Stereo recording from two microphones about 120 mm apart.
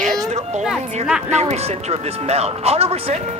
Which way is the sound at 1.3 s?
60° right (ahead or behind).